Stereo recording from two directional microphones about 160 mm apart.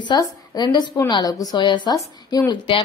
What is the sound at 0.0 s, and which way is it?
Speech, 25° left (ahead or behind).